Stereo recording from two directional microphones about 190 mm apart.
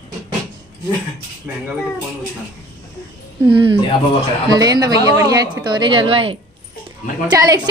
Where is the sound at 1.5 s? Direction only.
10° right (ahead or behind).